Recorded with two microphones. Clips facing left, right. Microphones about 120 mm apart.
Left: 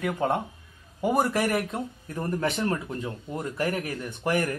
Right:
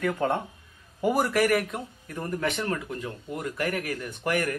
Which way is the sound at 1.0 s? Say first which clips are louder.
Right 1 dB; 25° left (ahead or behind).